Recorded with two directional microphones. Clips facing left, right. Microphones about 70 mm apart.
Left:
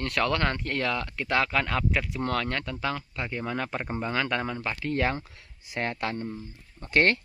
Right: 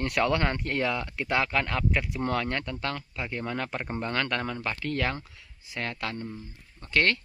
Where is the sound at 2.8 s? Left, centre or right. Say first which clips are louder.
Left 2 dB; centre.